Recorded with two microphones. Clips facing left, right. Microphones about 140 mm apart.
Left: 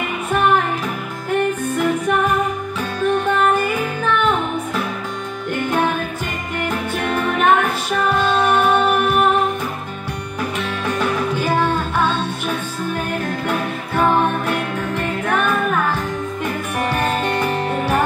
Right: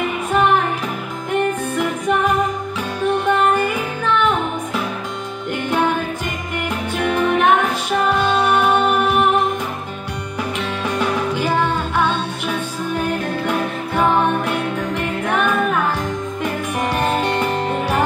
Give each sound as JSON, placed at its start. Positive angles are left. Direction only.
{"t": 3.0, "sound": "music", "side_deg": -10}
{"t": 7.0, "sound": "music", "side_deg": -15}
{"t": 10.9, "sound": "music", "side_deg": -10}
{"t": 14.5, "sound": "music", "side_deg": -10}
{"t": 16.8, "sound": "music", "side_deg": -10}